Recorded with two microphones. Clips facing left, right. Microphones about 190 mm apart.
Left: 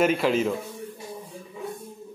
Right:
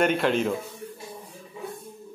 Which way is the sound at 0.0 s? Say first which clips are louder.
Left 1 dB; centre (ahead or behind).